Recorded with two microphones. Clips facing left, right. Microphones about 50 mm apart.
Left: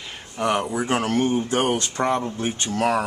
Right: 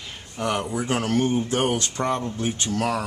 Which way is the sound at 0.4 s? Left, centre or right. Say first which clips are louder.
Left 3 dB; left.